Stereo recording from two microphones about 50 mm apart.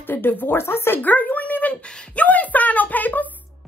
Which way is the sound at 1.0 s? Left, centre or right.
Left.